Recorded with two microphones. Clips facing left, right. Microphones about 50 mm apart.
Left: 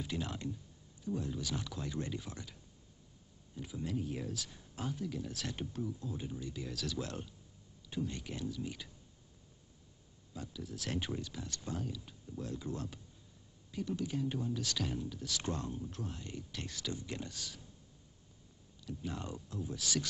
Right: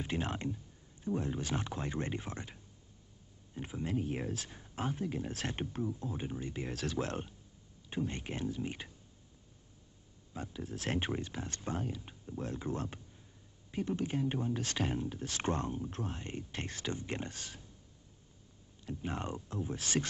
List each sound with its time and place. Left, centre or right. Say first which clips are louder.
0.0 s speech: right 3 dB; right
10.3 s speech: right 3 dB; right
18.9 s speech: right 3 dB; right